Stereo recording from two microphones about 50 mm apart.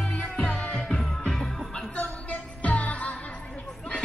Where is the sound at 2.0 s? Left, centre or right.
Left.